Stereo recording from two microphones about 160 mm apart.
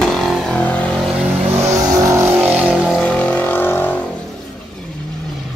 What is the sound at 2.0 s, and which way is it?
Vehicle, 15° right (ahead or behind).